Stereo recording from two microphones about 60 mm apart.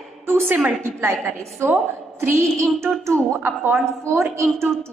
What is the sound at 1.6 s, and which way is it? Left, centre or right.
A woman's voice, right.